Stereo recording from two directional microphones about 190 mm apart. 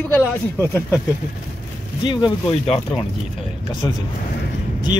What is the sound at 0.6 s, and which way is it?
Speech, 15° left (ahead or behind).